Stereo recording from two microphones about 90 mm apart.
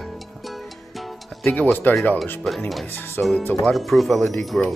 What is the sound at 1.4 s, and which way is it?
Speech, 20° left (ahead or behind).